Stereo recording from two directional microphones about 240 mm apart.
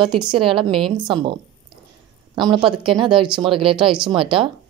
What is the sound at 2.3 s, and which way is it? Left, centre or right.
Speech, centre.